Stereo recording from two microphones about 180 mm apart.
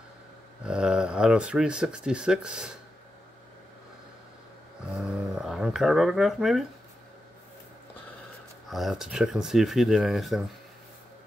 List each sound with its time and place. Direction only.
0.7 s speech: 5° right (ahead or behind)
4.9 s a sound: centre (ahead or behind)
8.6 s speech: centre (ahead or behind)